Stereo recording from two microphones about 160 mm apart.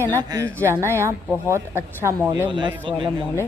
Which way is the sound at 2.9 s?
30° right (ahead or behind).